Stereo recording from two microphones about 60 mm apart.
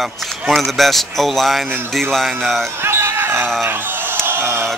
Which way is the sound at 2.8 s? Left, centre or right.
Right.